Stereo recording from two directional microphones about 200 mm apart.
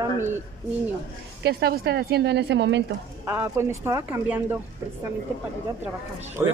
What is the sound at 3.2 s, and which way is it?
Speech, 15° right (ahead or behind).